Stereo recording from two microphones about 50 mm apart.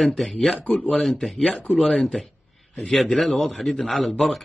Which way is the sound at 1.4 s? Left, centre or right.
Left.